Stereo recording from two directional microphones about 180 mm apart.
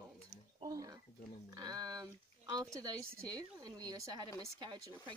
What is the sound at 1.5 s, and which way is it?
Speech, 20° right (ahead or behind).